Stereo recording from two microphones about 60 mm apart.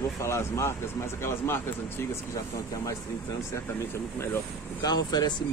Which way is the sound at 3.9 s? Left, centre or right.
Left.